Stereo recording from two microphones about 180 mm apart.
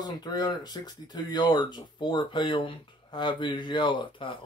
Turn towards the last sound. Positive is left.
turn(degrees=25)  # may be behind; listen again after turning